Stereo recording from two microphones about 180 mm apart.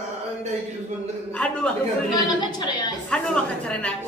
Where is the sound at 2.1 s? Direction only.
25° left (ahead or behind).